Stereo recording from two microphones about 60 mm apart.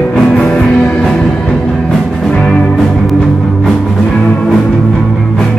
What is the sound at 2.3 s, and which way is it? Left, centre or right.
Music, centre.